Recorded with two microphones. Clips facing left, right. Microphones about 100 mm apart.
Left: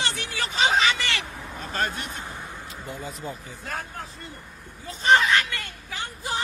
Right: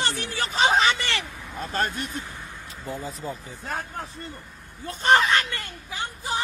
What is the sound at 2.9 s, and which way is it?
Speech, 35° right (ahead or behind).